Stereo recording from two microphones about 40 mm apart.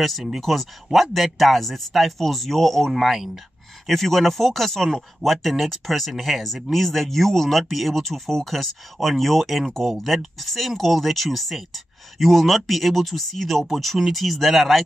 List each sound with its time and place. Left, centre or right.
0.4 s speech: centre
2.9 s speech: centre
3.8 s speech: centre